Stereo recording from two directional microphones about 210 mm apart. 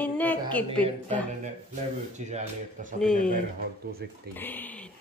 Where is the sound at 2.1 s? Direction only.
35° right (ahead or behind).